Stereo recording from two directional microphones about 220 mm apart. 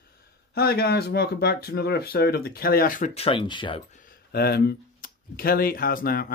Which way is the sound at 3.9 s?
40° left (ahead or behind).